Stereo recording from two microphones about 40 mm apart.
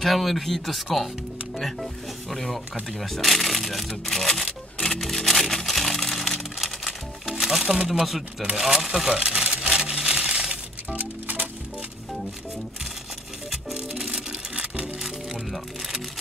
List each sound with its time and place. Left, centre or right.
0.0 s speech: centre
5.0 s music: centre
6.6 s music: centre
7.9 s speech: centre
9.3 s music: centre
11.0 s music: right
13.7 s music: centre
14.5 s music: right
15.0 s music: centre